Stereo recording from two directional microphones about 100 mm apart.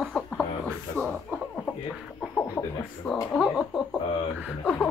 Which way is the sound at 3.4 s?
5° right (ahead or behind).